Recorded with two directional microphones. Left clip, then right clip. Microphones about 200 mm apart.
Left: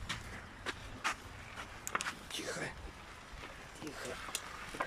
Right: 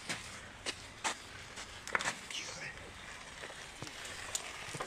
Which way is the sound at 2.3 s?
35° left (ahead or behind).